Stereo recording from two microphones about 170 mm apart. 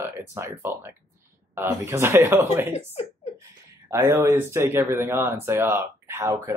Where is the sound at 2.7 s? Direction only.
40° left (ahead or behind).